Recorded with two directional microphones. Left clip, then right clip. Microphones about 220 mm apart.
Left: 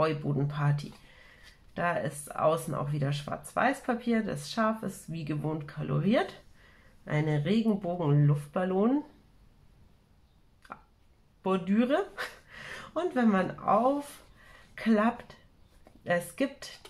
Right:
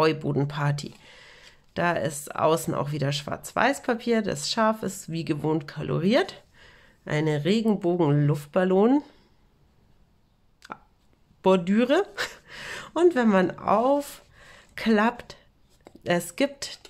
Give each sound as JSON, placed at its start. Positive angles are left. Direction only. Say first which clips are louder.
{"t": 0.0, "sound": "speech", "louder": "right 6 dB", "side_deg": -50}
{"t": 11.4, "sound": "speech", "louder": "right 8 dB", "side_deg": -50}